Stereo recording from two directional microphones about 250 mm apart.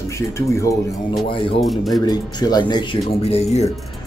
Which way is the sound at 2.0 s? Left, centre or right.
Centre.